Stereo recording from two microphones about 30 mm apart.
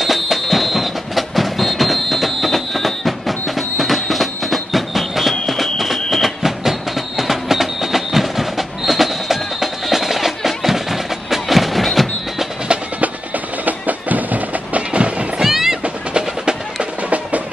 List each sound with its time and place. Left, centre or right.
0.0 s music: centre
5.5 s a sound: centre
6.0 s music: centre
6.6 s train: centre
13.7 s music: right
14.9 s music: right
15.4 s music: centre
16.1 s percussion: right